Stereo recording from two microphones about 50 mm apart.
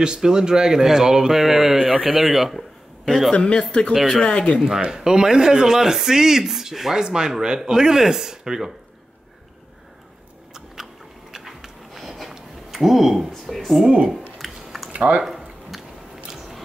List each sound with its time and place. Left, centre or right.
0.0 s speech: centre
3.1 s a man's voice: centre
3.3 s speech: left
4.9 s speech: centre
11.3 s a sound: centre
13.5 s speech: centre
14.4 s a sound: centre
14.9 s speech: right
15.2 s a sound: centre